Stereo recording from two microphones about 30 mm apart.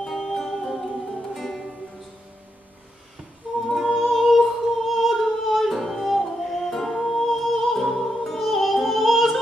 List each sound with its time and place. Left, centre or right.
0.0 s music: centre
3.6 s music: centre
3.9 s music: centre
6.7 s music: centre